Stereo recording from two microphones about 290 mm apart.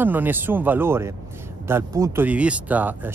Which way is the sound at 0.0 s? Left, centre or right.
Centre.